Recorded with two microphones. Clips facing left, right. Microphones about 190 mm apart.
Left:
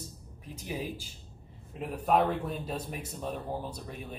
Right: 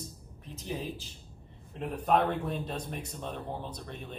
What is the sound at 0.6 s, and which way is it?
Speech, 10° left (ahead or behind).